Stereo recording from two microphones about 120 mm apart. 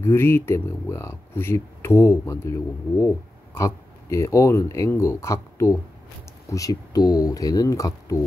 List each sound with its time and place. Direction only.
0.0 s speech: 20° left (ahead or behind)